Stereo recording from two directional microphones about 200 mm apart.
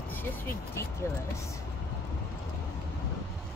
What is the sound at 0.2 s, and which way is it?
Speech, 10° left (ahead or behind).